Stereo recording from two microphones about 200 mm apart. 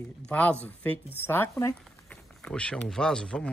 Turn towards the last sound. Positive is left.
turn(degrees=5)  # may be behind; listen again after turning